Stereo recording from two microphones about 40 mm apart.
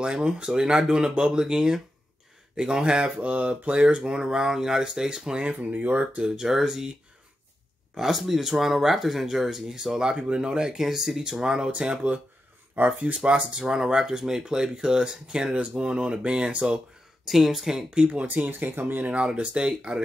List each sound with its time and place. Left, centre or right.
0.0 s speech: right
5.7 s speech: right
6.2 s speech: centre
13.0 s speech: right
17.3 s speech: centre
17.9 s speech: right
18.2 s speech: right
19.1 s speech: right